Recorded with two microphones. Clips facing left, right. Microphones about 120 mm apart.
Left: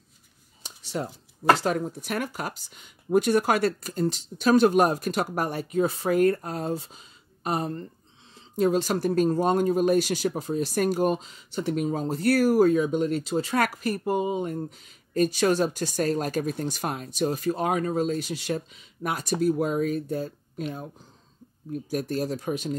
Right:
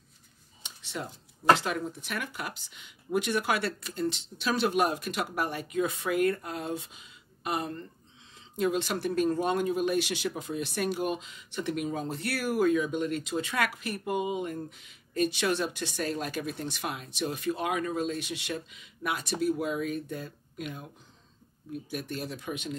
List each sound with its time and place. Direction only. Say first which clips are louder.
0.6 s a sound: left 6 dB; 40° left (ahead or behind)
1.5 s speech: left 3 dB; 40° left (ahead or behind)
21.9 s speech: left 9 dB; 40° left (ahead or behind)